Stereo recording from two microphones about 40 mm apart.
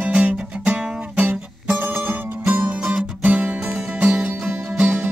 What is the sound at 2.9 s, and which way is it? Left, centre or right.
Music, right.